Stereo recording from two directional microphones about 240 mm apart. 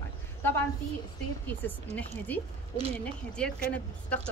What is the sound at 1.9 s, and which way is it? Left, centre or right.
Speech, right.